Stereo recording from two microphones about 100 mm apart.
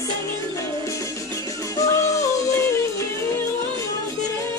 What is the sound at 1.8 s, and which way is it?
Music, 30° left (ahead or behind).